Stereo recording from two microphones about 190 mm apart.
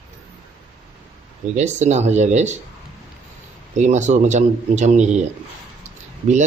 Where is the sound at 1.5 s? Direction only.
40° right (ahead or behind).